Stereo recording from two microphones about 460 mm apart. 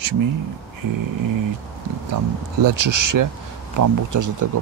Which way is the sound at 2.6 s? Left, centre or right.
Right.